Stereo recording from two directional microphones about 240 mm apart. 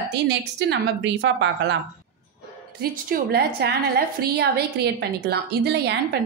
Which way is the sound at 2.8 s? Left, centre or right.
Right.